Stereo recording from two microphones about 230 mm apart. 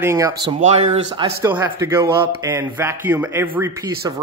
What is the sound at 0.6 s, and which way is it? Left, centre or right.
Speech, right.